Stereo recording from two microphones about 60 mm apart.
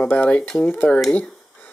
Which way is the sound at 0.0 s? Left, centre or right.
Left.